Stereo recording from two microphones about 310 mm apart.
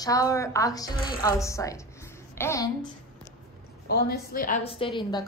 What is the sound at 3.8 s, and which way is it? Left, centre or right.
A woman's voice, left.